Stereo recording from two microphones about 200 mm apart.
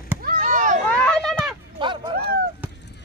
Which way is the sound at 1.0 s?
5° left (ahead or behind).